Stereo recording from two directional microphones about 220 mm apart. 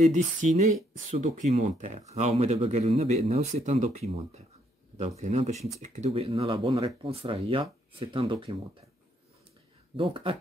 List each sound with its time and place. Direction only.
0.0 s speech: 30° right (ahead or behind)
9.9 s speech: 25° right (ahead or behind)